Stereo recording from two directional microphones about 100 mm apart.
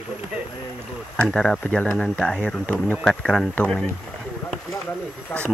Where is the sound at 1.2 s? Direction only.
5° left (ahead or behind).